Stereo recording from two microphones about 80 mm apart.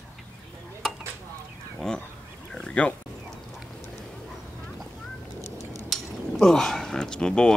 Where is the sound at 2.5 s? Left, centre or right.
Centre.